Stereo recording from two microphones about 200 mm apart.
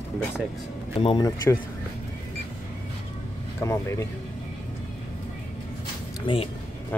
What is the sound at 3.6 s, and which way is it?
Speech, 15° left (ahead or behind).